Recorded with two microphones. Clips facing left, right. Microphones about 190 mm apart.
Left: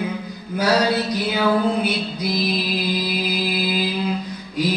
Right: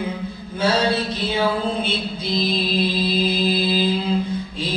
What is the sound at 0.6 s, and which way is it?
Music, 25° right (ahead or behind).